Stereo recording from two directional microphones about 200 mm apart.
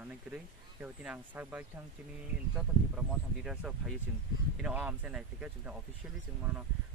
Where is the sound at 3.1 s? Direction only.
Centre (ahead or behind).